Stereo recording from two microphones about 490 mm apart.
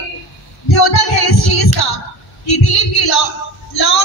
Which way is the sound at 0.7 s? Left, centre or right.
Left.